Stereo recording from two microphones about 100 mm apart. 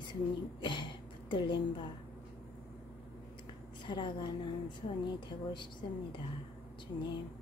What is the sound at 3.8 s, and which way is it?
Speech, 50° left (ahead or behind).